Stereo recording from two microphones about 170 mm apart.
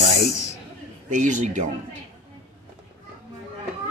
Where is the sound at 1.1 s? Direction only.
45° right (ahead or behind).